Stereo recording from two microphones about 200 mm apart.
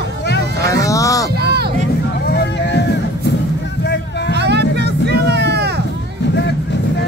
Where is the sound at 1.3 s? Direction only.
55° right (ahead or behind).